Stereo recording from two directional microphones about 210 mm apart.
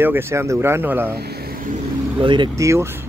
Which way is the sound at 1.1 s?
50° right (ahead or behind).